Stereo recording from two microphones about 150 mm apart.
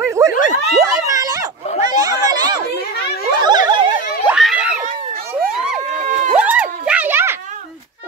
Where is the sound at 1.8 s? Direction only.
25° right (ahead or behind).